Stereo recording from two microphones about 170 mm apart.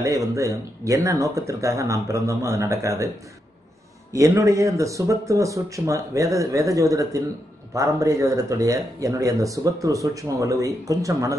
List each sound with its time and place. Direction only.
0.0 s speech: 20° right (ahead or behind)
4.1 s speech: 20° right (ahead or behind)